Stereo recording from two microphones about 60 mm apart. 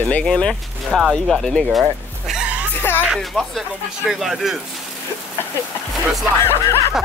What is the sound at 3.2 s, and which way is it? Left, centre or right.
Speech, centre.